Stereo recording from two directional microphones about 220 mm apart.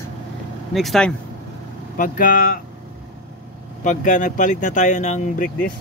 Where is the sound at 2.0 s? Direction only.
40° left (ahead or behind).